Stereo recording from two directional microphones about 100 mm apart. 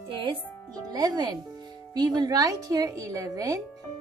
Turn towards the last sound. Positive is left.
turn(degrees=-35)  # may be behind; listen again after turning